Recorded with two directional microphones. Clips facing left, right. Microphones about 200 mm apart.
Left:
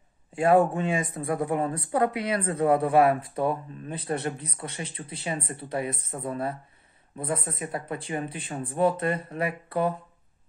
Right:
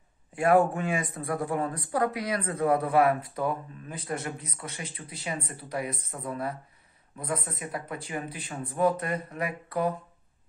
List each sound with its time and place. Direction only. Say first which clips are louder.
0.3 s speech: left 2 dB; 25° left (ahead or behind)